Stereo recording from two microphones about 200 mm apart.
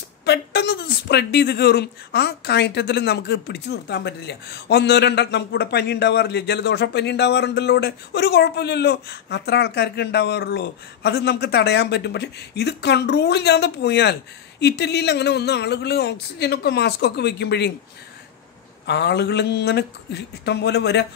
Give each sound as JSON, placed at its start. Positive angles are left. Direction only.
{"t": 0.2, "sound": "speech", "side_deg": 55}
{"t": 18.9, "sound": "speech", "side_deg": 60}